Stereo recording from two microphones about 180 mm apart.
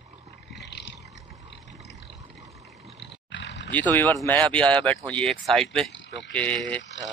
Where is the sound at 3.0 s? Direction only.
80° left.